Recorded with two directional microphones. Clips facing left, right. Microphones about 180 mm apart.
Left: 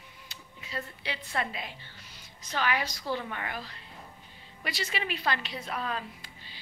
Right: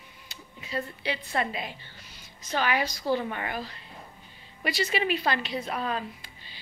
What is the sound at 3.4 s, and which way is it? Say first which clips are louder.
Speech: right 4 dB; 10° right (ahead or behind).